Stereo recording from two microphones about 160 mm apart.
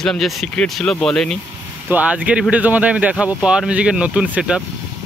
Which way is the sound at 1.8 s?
10° right (ahead or behind).